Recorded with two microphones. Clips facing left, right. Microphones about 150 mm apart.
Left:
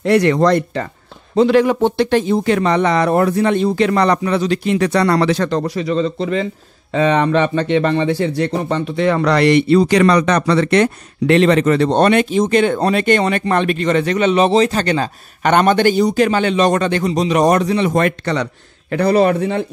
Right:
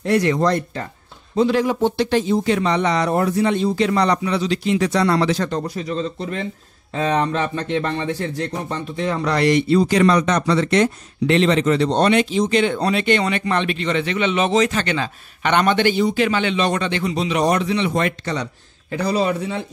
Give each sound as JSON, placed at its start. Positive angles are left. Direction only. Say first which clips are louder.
{"t": 0.0, "sound": "speech", "louder": "left 5 dB", "side_deg": 70}